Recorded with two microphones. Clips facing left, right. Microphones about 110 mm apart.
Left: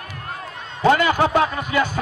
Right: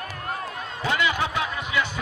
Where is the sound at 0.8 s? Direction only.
45° left (ahead or behind).